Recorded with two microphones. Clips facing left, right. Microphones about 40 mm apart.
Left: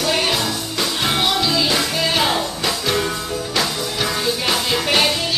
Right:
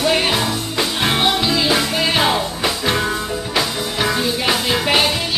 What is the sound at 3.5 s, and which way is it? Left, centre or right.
Music, centre.